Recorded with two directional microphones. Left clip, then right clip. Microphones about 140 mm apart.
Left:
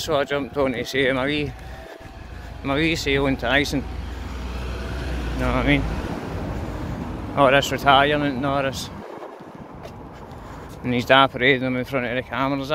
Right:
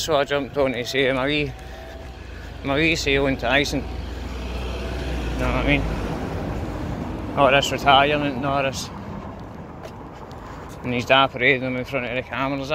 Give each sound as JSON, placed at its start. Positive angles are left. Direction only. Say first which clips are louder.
{"t": 0.0, "sound": "speech", "louder": "right 1 dB", "side_deg": 35}
{"t": 2.6, "sound": "speech", "louder": "right 2 dB", "side_deg": 35}
{"t": 5.4, "sound": "speech", "louder": "left 1 dB", "side_deg": 50}
{"t": 7.3, "sound": "speech", "louder": "even", "side_deg": 50}
{"t": 10.9, "sound": "speech", "louder": "left 1 dB", "side_deg": 50}